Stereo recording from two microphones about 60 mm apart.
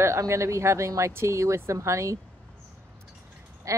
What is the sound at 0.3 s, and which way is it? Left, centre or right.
Speech, right.